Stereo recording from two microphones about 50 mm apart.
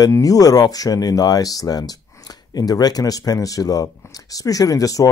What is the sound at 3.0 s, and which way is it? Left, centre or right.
Speech, left.